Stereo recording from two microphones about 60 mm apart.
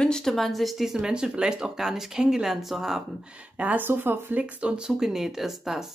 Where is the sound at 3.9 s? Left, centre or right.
Right.